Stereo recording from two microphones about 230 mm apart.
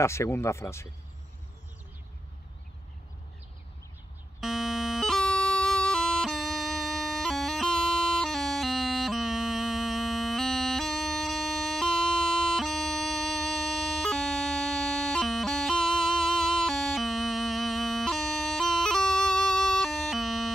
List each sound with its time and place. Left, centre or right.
0.0 s speech: centre
4.4 s bagpipes: centre